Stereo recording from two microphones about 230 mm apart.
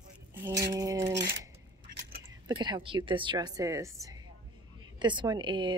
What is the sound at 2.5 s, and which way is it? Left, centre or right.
Speech, centre.